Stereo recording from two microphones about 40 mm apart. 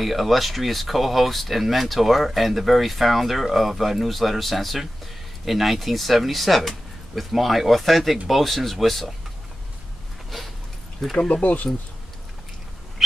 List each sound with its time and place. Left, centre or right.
0.0 s speech: centre
11.1 s speech: left